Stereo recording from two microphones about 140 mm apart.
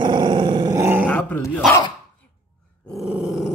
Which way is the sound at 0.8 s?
15° right (ahead or behind).